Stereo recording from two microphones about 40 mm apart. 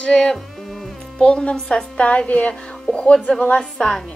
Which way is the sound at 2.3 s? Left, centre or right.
Left.